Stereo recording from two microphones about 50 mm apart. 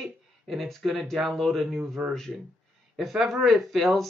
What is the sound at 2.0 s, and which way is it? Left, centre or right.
Speech, centre.